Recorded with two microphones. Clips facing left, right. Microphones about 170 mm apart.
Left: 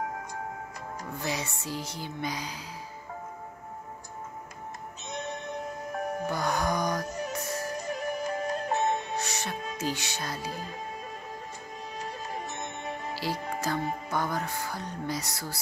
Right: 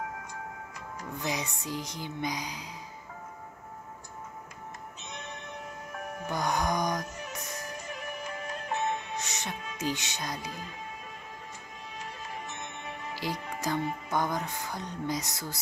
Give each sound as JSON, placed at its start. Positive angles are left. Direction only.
{"t": 1.1, "sound": "music", "side_deg": -15}
{"t": 5.0, "sound": "music", "side_deg": 40}
{"t": 6.2, "sound": "music", "side_deg": -15}
{"t": 7.1, "sound": "music", "side_deg": 40}
{"t": 7.3, "sound": "music", "side_deg": -20}
{"t": 7.6, "sound": "music", "side_deg": 40}
{"t": 9.1, "sound": "music", "side_deg": -20}
{"t": 12.0, "sound": "music", "side_deg": 40}
{"t": 13.1, "sound": "music", "side_deg": -15}
{"t": 14.1, "sound": "speech", "side_deg": -20}